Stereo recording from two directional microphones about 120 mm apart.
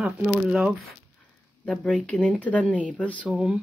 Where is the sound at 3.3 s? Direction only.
10° right (ahead or behind).